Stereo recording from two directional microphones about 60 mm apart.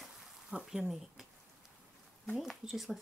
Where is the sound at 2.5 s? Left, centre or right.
Centre.